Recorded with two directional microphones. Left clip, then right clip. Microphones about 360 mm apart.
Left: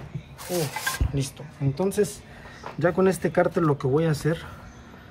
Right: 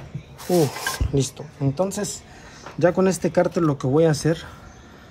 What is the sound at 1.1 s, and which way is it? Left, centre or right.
Speech, centre.